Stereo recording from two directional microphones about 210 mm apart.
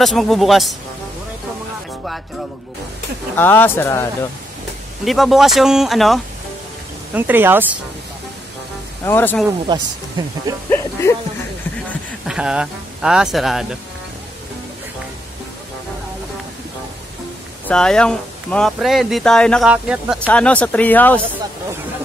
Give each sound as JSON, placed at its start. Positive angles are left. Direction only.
{"t": 0.0, "sound": "speech", "side_deg": 0}
{"t": 3.3, "sound": "speech", "side_deg": 10}
{"t": 5.0, "sound": "speech", "side_deg": 0}
{"t": 9.0, "sound": "speech", "side_deg": 10}
{"t": 9.7, "sound": "speech", "side_deg": -20}
{"t": 10.7, "sound": "speech", "side_deg": 15}
{"t": 12.3, "sound": "speech", "side_deg": -5}
{"t": 17.6, "sound": "speech", "side_deg": 5}
{"t": 20.2, "sound": "speech", "side_deg": 5}